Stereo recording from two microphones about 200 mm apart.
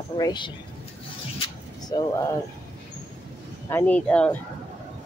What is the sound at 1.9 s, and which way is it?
Speech, 20° left (ahead or behind).